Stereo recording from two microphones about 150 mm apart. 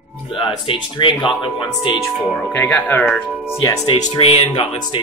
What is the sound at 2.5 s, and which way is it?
Speech, 10° left (ahead or behind).